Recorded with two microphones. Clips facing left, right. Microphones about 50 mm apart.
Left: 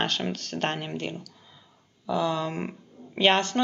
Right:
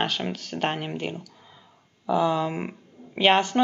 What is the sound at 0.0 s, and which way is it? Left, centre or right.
Speech, centre.